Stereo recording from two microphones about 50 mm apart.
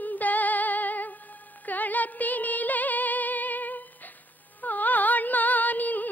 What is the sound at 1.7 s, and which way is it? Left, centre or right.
Music, left.